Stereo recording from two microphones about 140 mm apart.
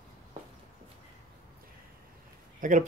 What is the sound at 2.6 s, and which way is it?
Speech, 65° right (ahead or behind).